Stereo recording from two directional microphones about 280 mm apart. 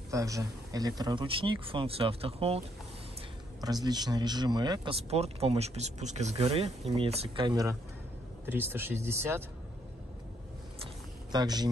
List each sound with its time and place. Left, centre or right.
0.1 s speech: centre
3.6 s speech: centre
11.3 s speech: centre